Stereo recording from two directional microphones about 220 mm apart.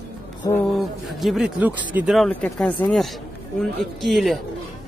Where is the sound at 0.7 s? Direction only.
Centre (ahead or behind).